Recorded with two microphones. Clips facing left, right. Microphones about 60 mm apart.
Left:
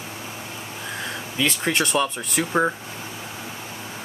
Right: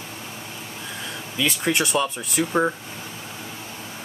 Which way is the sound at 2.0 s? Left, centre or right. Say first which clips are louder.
Even; centre.